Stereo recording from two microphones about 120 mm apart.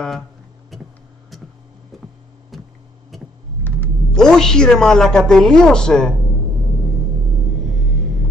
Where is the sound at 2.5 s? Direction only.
Centre (ahead or behind).